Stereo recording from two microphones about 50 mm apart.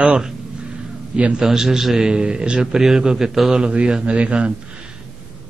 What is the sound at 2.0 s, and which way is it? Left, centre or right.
A man's voice, centre.